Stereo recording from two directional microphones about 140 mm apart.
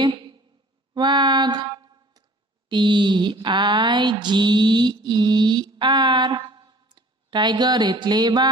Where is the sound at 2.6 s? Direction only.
35° right (ahead or behind).